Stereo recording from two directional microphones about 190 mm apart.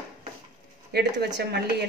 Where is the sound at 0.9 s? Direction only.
65° right (ahead or behind).